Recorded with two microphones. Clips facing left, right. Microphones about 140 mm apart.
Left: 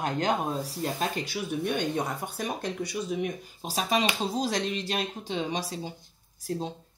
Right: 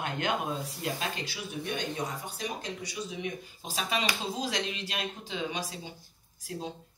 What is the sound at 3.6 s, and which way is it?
Speech, 35° left (ahead or behind).